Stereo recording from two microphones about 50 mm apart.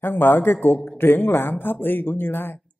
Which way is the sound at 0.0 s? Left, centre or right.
Left.